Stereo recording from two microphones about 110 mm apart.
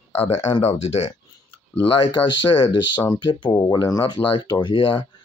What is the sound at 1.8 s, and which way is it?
Speech, 50° left (ahead or behind).